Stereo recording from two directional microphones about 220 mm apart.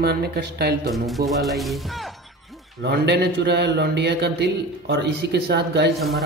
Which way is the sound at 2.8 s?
50° right (ahead or behind).